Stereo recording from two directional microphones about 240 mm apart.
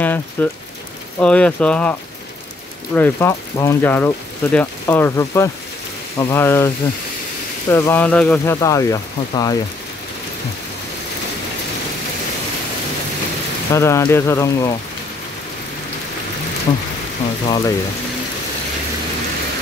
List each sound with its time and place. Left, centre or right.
0.0 s speech: centre
7.7 s speech: centre
13.7 s speech: centre
17.5 s speech: centre